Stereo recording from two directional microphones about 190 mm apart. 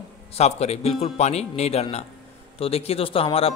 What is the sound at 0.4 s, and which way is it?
Speech, 35° left (ahead or behind).